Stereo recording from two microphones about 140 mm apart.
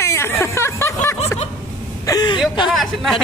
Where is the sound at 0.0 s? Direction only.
20° left (ahead or behind).